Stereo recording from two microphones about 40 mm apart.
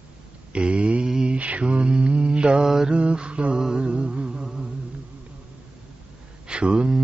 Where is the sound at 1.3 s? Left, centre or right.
Right.